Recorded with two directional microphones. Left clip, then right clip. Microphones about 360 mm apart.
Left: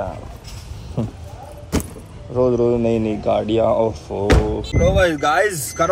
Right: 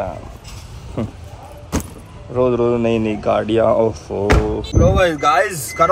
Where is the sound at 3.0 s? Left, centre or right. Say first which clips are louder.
Right 2 dB; centre.